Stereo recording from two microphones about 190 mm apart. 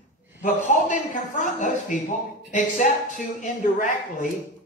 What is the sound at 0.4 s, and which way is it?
A man's voice, 40° left (ahead or behind).